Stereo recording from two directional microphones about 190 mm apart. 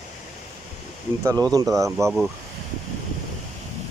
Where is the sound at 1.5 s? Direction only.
15° right (ahead or behind).